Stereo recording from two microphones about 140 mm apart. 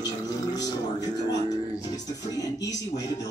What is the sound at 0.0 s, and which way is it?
Music, 25° left (ahead or behind).